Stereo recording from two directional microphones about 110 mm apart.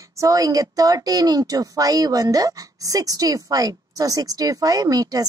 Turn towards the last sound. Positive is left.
turn(degrees=-35)  # may be behind; listen again after turning